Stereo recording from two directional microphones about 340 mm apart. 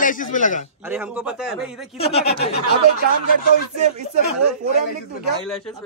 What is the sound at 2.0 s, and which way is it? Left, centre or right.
Speech, centre.